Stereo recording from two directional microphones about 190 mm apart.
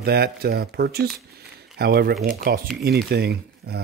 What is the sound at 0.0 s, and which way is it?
Speech, 55° right (ahead or behind).